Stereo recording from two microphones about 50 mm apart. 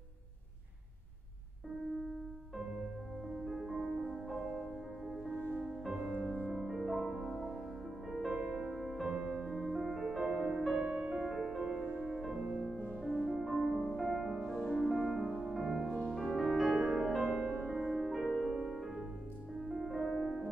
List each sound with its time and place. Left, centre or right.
3.4 s music: centre
6.1 s music: right
6.5 s music: centre
11.8 s music: right
13.4 s music: centre
16.7 s music: centre
17.6 s music: centre
19.9 s music: centre